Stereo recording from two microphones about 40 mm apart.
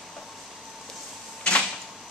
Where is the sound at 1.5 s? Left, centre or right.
Left.